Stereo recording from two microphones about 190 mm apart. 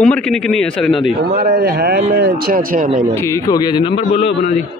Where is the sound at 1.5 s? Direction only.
55° right (ahead or behind).